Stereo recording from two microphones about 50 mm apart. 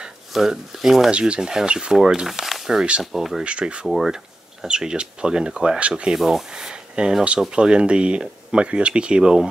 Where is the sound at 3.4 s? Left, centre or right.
Right.